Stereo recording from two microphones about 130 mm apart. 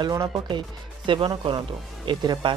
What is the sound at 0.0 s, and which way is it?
Speech, 25° right (ahead or behind).